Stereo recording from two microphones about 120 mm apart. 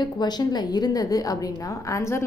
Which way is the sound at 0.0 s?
35° left (ahead or behind).